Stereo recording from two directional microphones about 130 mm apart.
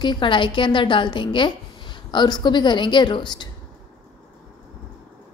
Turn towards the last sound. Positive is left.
turn(degrees=35)  # may be behind; listen again after turning